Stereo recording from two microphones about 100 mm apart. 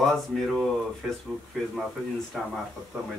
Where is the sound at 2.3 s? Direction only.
5° left (ahead or behind).